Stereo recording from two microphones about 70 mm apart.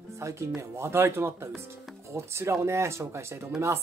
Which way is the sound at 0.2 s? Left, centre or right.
Right.